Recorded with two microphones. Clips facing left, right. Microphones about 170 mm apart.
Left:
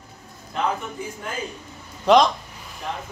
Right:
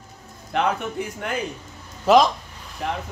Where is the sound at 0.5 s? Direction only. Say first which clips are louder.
Right 3 dB; 70° right (ahead or behind).